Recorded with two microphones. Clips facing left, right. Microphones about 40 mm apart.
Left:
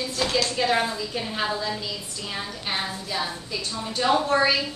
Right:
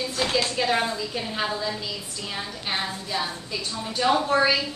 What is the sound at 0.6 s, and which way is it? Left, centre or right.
A woman's voice, centre.